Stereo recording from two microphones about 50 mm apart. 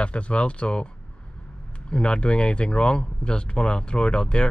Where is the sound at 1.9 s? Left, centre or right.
Left.